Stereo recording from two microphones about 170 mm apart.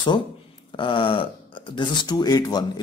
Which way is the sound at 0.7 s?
30° left (ahead or behind).